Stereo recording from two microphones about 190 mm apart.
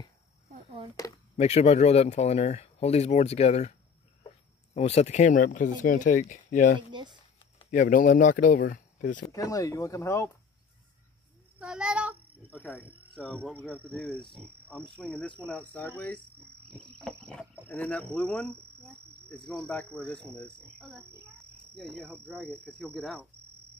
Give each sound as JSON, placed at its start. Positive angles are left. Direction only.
{"t": 1.3, "sound": "speech", "side_deg": 35}
{"t": 9.2, "sound": "speech", "side_deg": 15}
{"t": 11.6, "sound": "child singing", "side_deg": -5}
{"t": 12.4, "sound": "speech", "side_deg": 5}
{"t": 13.6, "sound": "cricket", "side_deg": 5}
{"t": 15.0, "sound": "speech", "side_deg": 5}
{"t": 17.1, "sound": "cricket", "side_deg": 5}
{"t": 17.6, "sound": "speech", "side_deg": 5}
{"t": 21.6, "sound": "speech", "side_deg": 5}
{"t": 22.7, "sound": "cricket", "side_deg": 5}